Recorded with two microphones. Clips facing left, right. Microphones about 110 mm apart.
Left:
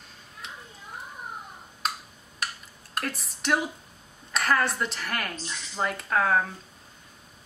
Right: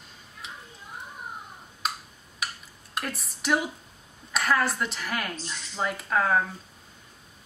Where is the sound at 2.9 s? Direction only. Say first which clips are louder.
Left 1 dB; centre (ahead or behind).